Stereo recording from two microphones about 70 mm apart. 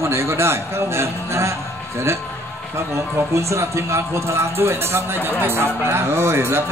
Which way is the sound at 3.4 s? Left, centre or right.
Right.